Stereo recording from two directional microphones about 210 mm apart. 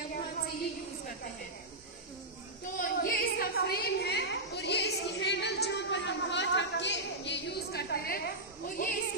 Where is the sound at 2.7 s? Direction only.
45° left (ahead or behind).